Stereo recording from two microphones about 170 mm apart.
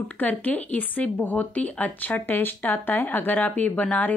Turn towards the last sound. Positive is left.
turn(degrees=10)  # may be behind; listen again after turning